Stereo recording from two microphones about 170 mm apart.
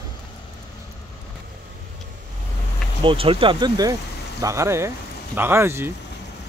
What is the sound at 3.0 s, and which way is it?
Speech, 30° right (ahead or behind).